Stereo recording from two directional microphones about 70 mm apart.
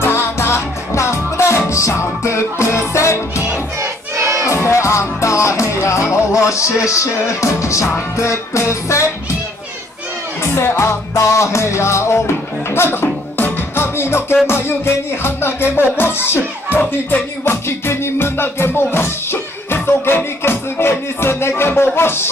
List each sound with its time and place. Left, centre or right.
0.0 s music: left
3.8 s crowd: right
4.5 s music: left
10.4 s music: left
17.5 s music: left